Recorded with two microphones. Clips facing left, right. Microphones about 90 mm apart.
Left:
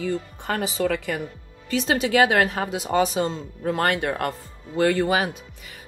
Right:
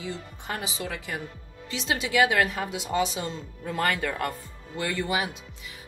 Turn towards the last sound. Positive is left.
turn(degrees=45)  # may be behind; listen again after turning